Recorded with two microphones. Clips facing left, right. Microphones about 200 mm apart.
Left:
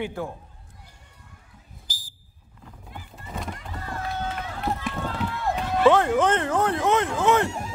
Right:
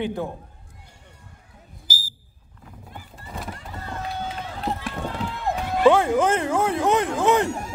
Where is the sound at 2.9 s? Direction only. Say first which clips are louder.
Left 1 dB; centre (ahead or behind).